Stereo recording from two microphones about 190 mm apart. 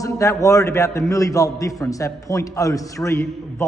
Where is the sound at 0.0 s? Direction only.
15° left (ahead or behind).